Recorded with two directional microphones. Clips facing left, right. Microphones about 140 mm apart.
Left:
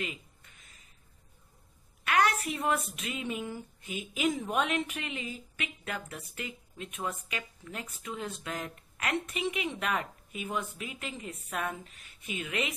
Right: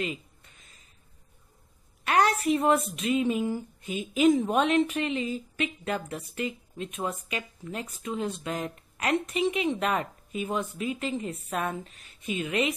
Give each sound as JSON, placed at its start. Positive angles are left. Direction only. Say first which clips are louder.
{"t": 2.0, "sound": "a woman's voice", "louder": "right 4 dB", "side_deg": -25}